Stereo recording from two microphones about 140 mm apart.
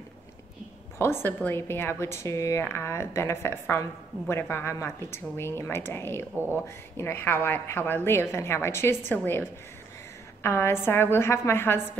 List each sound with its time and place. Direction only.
0.9 s speech: 15° left (ahead or behind)
6.3 s speech: 15° right (ahead or behind)
7.0 s speech: 15° left (ahead or behind)
10.4 s speech: 15° left (ahead or behind)